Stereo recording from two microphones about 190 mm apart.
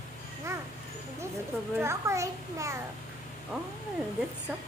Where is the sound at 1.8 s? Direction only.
15° right (ahead or behind).